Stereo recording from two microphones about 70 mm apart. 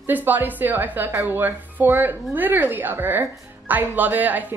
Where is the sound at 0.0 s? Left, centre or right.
Right.